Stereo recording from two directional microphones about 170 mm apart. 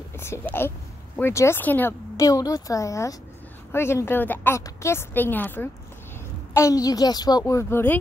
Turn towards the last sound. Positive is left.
turn(degrees=15)  # may be behind; listen again after turning